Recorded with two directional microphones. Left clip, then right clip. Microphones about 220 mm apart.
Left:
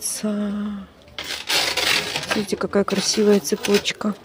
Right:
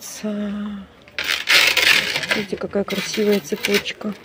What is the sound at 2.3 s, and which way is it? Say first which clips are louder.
Speech: even; 20° left (ahead or behind).